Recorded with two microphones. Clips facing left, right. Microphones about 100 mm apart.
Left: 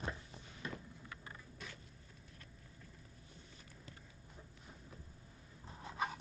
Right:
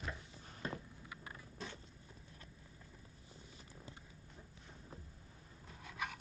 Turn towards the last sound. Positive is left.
turn(degrees=30)  # may be behind; listen again after turning